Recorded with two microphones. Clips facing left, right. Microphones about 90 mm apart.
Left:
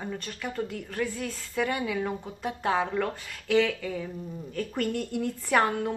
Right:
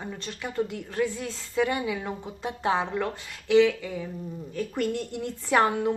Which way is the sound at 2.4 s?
20° right (ahead or behind).